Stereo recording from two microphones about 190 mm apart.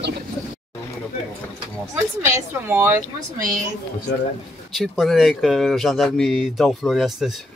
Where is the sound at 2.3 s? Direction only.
10° right (ahead or behind).